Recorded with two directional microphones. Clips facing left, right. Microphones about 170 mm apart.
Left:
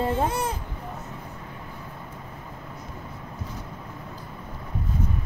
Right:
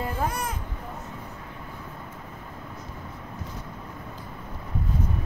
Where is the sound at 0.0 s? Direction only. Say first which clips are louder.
Left 4 dB; 25° left (ahead or behind).